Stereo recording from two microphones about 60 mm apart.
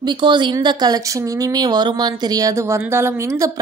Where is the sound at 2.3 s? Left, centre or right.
Right.